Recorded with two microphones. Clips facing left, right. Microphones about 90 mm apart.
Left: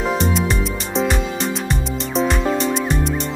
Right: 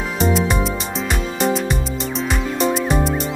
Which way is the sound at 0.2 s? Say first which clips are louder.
Right 2 dB; centre (ahead or behind).